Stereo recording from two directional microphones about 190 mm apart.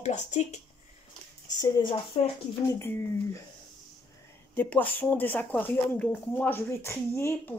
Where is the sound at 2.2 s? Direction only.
35° left (ahead or behind).